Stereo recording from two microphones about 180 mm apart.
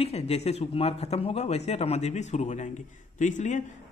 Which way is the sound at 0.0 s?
35° left (ahead or behind).